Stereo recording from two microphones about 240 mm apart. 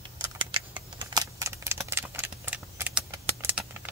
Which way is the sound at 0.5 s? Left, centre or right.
Centre.